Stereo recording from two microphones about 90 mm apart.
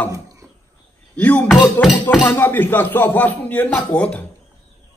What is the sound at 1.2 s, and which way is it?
A man's voice, 15° left (ahead or behind).